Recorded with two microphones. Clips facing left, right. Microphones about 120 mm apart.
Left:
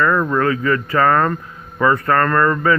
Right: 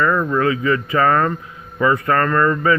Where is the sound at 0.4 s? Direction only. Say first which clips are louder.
Even; 20° right (ahead or behind).